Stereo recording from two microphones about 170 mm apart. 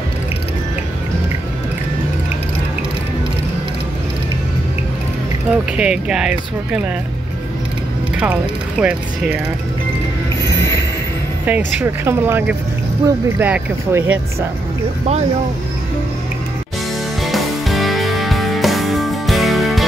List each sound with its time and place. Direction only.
5.5 s speech: 5° right (ahead or behind)
8.2 s speech: 10° right (ahead or behind)
11.4 s speech: 10° right (ahead or behind)
17.2 s music: centre (ahead or behind)